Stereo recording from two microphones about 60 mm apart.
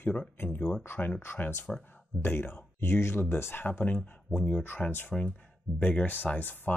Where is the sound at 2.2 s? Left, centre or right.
Left.